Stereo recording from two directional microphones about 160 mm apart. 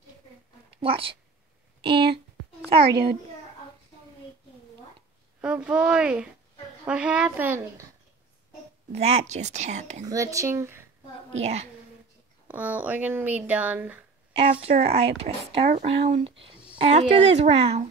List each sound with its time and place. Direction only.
0.7 s speech: 35° right (ahead or behind)
5.4 s speech: 5° right (ahead or behind)
8.9 s a woman's voice: 45° right (ahead or behind)
10.0 s speech: 20° right (ahead or behind)
11.3 s a woman's voice: 45° right (ahead or behind)
12.4 s speech: 10° right (ahead or behind)
14.6 s a woman's voice: 40° right (ahead or behind)